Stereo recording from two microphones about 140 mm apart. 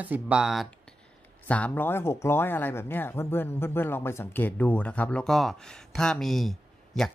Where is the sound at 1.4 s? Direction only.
10° left (ahead or behind).